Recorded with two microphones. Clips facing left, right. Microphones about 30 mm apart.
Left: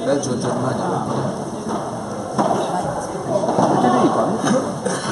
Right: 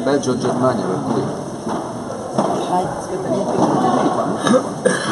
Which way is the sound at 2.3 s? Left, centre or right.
Centre.